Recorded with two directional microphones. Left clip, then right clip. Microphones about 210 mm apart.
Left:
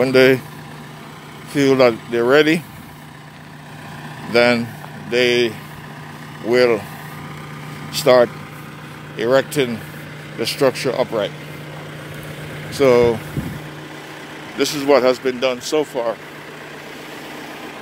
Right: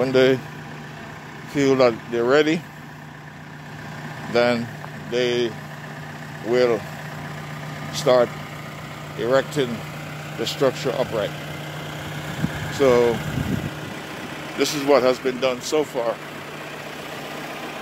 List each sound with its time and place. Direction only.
0.0 s speech: 30° left (ahead or behind)
1.5 s speech: 25° left (ahead or behind)
4.3 s speech: 30° left (ahead or behind)
6.5 s speech: 30° left (ahead or behind)
7.9 s speech: 30° left (ahead or behind)
12.3 s vehicle: 45° right (ahead or behind)
12.7 s speech: 25° left (ahead or behind)
13.2 s vehicle: 50° right (ahead or behind)
14.6 s speech: 25° left (ahead or behind)